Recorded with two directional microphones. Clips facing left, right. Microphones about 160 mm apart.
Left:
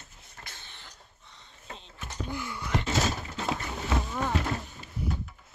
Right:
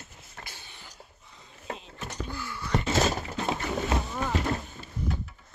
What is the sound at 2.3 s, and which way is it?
Wail, 20° left (ahead or behind).